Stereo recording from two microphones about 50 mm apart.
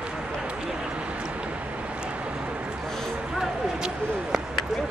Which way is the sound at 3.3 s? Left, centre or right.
Centre.